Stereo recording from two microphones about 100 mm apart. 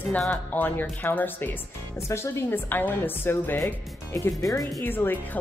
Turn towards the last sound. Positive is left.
turn(degrees=20)  # may be behind; listen again after turning